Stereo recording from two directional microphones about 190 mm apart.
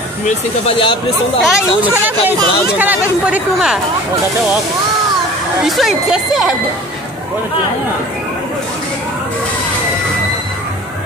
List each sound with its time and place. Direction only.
0.7 s speech: 25° left (ahead or behind)
1.4 s speech: 10° right (ahead or behind)
5.6 s speech: centre (ahead or behind)